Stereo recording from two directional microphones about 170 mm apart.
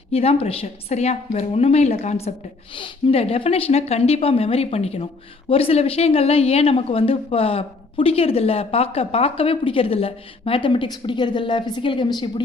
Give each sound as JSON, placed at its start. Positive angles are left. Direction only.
{"t": 0.1, "sound": "speech", "side_deg": 35}